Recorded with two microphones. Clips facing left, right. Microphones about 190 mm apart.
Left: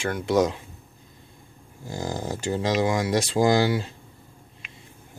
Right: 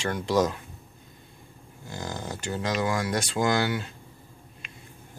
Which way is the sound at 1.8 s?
30° left (ahead or behind).